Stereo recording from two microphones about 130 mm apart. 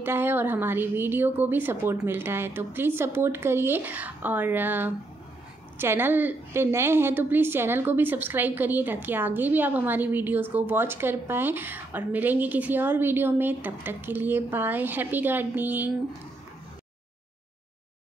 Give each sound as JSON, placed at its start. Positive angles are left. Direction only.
{"t": 0.0, "sound": "a woman's voice", "side_deg": -15}